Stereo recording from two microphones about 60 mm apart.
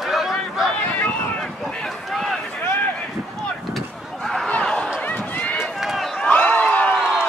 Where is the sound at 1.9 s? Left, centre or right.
Centre.